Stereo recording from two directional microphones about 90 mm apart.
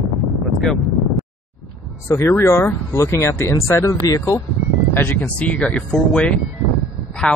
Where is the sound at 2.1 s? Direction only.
30° left (ahead or behind).